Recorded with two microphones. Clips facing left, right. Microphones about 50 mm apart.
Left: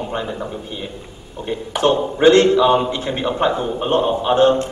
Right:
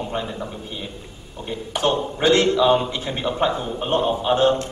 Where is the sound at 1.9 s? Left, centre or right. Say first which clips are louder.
Left 6 dB; centre.